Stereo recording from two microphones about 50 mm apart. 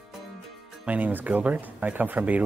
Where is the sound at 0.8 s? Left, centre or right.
Right.